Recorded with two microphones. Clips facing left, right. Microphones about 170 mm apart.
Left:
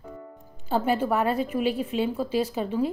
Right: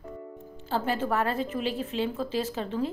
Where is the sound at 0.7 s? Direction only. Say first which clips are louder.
Left 4 dB; 15° left (ahead or behind).